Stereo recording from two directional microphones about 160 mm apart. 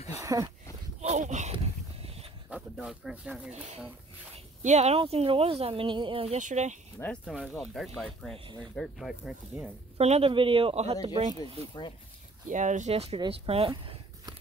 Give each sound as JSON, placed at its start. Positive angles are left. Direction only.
{"t": 0.1, "sound": "speech", "side_deg": -20}
{"t": 1.0, "sound": "a sound", "side_deg": -45}
{"t": 2.5, "sound": "speech", "side_deg": -5}
{"t": 4.6, "sound": "speech", "side_deg": -45}
{"t": 7.0, "sound": "speech", "side_deg": 10}
{"t": 9.9, "sound": "speech", "side_deg": -40}
{"t": 12.4, "sound": "speech", "side_deg": -50}
{"t": 13.7, "sound": "a sound", "side_deg": -25}